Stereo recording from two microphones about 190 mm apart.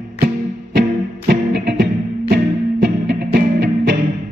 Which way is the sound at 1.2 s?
65° right (ahead or behind).